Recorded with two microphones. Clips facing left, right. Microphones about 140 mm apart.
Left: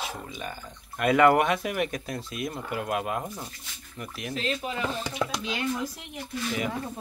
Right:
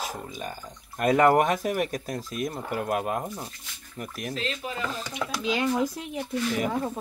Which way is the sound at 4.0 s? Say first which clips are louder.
Right 2 dB; 45° right (ahead or behind).